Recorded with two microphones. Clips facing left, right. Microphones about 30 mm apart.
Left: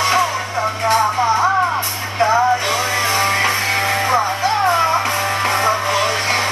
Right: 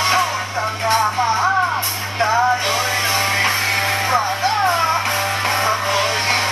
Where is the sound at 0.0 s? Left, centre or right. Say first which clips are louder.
Left 1 dB; centre.